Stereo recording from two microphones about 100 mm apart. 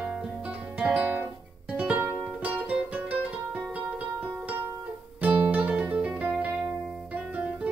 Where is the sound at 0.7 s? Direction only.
15° right (ahead or behind).